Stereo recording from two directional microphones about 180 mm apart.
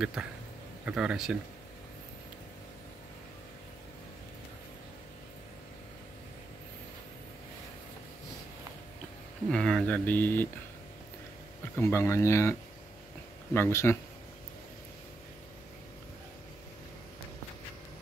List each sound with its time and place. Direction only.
0.0 s speech: 5° right (ahead or behind)
9.5 s speech: 5° left (ahead or behind)
11.7 s speech: 15° left (ahead or behind)